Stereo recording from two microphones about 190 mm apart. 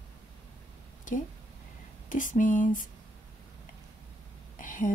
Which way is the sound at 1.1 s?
45° left (ahead or behind).